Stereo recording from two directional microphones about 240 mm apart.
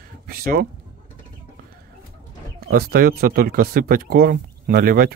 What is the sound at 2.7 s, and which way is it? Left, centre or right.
Speech, right.